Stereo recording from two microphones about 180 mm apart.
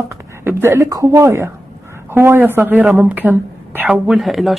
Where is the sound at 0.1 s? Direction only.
15° right (ahead or behind).